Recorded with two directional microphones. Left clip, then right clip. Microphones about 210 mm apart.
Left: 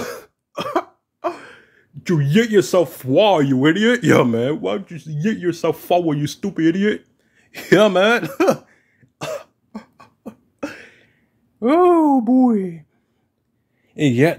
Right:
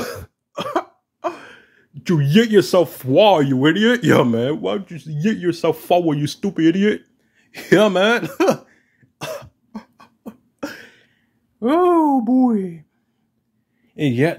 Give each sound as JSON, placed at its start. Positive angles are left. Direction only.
{"t": 0.0, "sound": "cough", "side_deg": 0}
{"t": 7.3, "sound": "speech", "side_deg": 10}
{"t": 9.2, "sound": "cough", "side_deg": 10}
{"t": 11.6, "sound": "speech", "side_deg": 10}
{"t": 13.8, "sound": "speech", "side_deg": 20}